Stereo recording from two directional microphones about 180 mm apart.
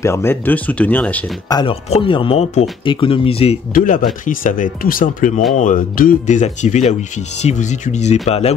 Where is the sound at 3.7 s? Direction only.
50° left (ahead or behind); by 8.5 s 35° left (ahead or behind).